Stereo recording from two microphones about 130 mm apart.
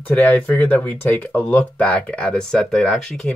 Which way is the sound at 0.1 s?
10° left (ahead or behind).